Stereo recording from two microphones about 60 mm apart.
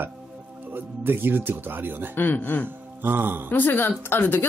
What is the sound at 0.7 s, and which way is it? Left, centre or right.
Speech, right.